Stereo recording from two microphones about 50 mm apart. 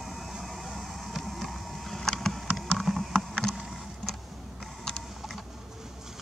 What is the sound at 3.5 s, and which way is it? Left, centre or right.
Boat, centre.